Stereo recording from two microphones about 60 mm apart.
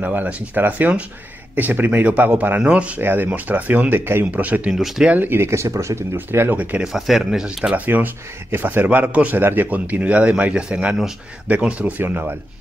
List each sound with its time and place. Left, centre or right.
0.0 s a man's voice: right
2.6 s a man's voice: centre
3.0 s speech: right
4.3 s a man's voice: right
4.7 s speech: centre
5.2 s speech: right
5.5 s speech: right
6.1 s speech: right
6.5 s a man's voice: right
6.8 s speech: centre
7.7 s a man's voice: right
12.0 s speech: right